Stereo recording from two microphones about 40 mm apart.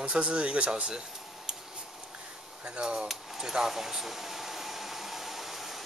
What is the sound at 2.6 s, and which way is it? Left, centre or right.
Speech, right.